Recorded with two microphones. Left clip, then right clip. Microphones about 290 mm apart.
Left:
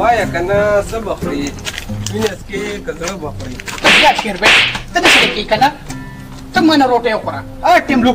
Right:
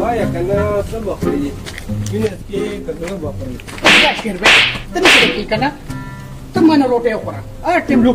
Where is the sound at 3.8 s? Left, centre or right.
Centre.